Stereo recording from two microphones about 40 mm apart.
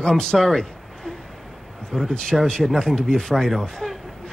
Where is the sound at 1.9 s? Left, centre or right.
Centre.